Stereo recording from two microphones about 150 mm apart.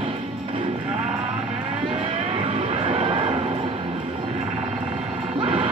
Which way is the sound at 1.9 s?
40° right (ahead or behind).